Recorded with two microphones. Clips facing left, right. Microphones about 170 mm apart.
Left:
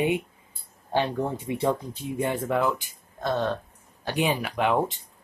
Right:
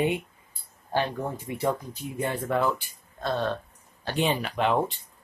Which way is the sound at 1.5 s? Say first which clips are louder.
Left 1 dB; 25° left (ahead or behind).